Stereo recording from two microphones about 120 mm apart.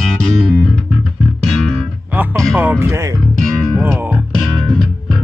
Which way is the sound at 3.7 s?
20° right (ahead or behind).